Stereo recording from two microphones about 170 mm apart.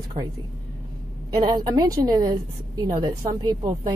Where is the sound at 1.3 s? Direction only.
25° right (ahead or behind).